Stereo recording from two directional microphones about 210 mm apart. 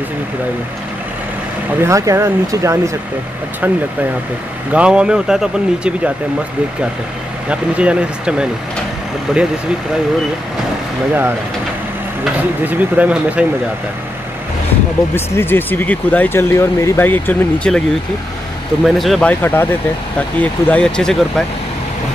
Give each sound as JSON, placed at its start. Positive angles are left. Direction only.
{"t": 1.8, "sound": "speech", "side_deg": -15}
{"t": 7.4, "sound": "speech", "side_deg": -5}
{"t": 12.6, "sound": "speech", "side_deg": -5}
{"t": 15.1, "sound": "speech", "side_deg": 10}
{"t": 18.9, "sound": "speech", "side_deg": 0}